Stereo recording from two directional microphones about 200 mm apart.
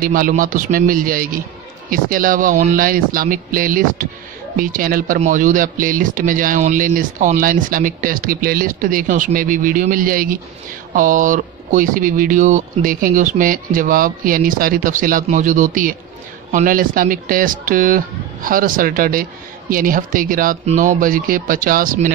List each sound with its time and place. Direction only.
0.0 s speech: 45° right (ahead or behind)